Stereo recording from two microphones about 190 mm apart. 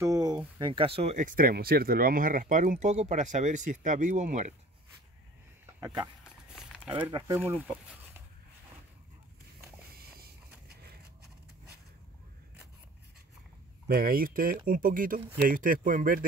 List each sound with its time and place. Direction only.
0.0 s speech: 20° right (ahead or behind); by 4.6 s 40° right (ahead or behind)
5.8 s speech: 15° right (ahead or behind)
6.5 s walk: 5° right (ahead or behind)
7.1 s speech: 20° right (ahead or behind)
7.3 s speech: 10° right (ahead or behind)
9.9 s a sound: 55° right (ahead or behind)
13.8 s speech: 50° right (ahead or behind)